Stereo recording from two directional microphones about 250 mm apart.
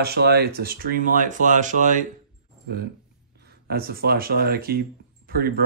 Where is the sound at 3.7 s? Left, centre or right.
Right.